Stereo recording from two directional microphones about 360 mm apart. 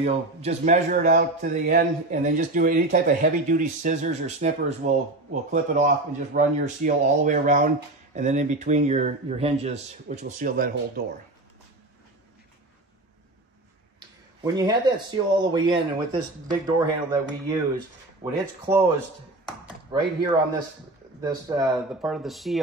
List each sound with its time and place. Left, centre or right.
0.0 s a man's voice: centre
13.9 s speech: centre
18.2 s speech: centre
19.9 s speech: centre